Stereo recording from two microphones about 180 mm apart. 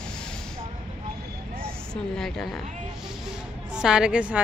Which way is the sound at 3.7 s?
5° right (ahead or behind).